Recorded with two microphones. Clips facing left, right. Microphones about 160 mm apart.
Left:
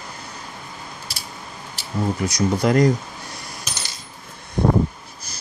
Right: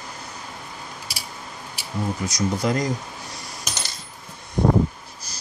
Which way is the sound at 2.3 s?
60° left (ahead or behind).